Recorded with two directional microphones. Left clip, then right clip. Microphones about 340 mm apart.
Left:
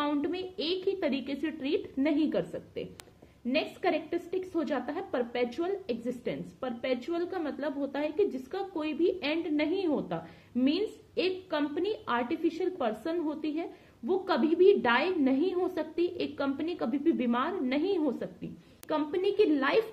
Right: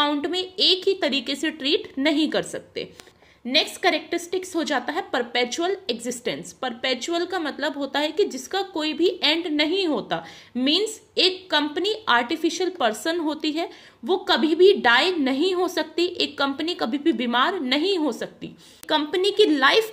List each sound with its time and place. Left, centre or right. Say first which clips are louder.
0.0 s a woman's voice: right 8 dB; right